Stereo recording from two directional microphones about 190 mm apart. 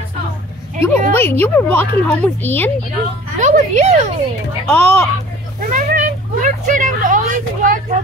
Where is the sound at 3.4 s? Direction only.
40° right (ahead or behind).